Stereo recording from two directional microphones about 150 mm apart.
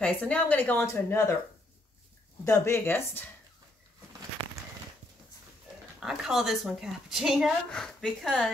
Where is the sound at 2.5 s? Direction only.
15° left (ahead or behind).